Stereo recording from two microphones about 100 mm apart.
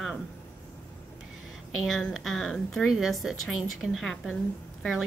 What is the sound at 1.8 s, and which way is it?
A woman's voice, centre (ahead or behind).